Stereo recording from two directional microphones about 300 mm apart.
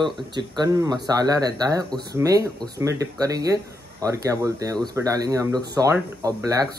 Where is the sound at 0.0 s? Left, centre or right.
Centre.